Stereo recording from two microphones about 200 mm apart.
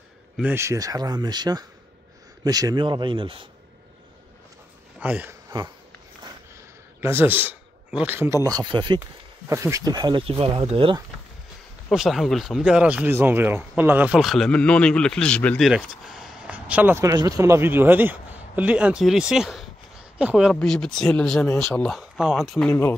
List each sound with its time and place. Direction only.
0.4 s speech: 10° right (ahead or behind)
5.0 s speech: 5° right (ahead or behind)
7.0 s a man's voice: 10° right (ahead or behind); by 11.0 s 25° right (ahead or behind)
11.9 s speech: centre (ahead or behind)
22.7 s speech: 10° left (ahead or behind)